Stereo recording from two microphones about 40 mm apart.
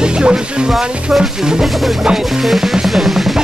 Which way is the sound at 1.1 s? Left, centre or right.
Centre.